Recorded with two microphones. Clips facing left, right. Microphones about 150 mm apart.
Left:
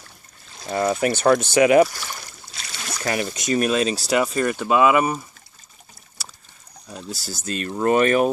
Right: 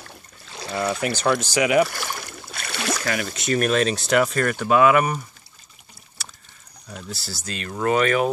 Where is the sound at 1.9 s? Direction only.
60° right (ahead or behind).